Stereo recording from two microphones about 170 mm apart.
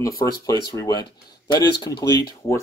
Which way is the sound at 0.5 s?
20° left (ahead or behind).